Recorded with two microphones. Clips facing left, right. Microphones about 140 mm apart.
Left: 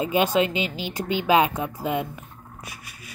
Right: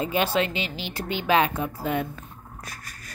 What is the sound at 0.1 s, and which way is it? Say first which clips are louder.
Speech: left 5 dB; 15° left (ahead or behind).